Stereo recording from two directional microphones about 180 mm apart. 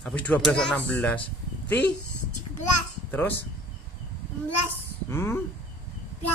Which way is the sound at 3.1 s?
10° left (ahead or behind).